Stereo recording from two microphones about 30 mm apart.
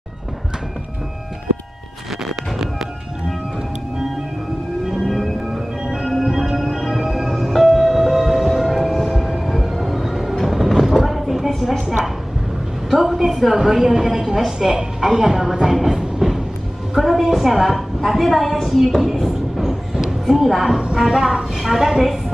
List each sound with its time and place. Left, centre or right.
5.0 s music: centre
5.5 s music: centre
9.0 s music: centre
9.3 s train: centre
11.1 s a sound: centre
12.9 s a woman's voice: centre
15.7 s train: centre
16.2 s music: centre
17.0 s a sound: centre
17.4 s a woman's voice: centre
19.6 s a sound: centre
20.3 s a woman's voice: centre
20.8 s speech: right